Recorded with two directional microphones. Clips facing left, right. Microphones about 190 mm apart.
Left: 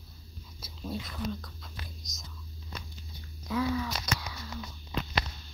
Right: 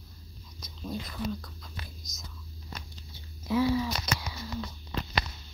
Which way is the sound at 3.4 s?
25° right (ahead or behind).